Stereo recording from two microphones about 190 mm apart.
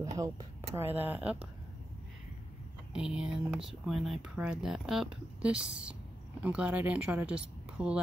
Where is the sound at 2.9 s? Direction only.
5° right (ahead or behind).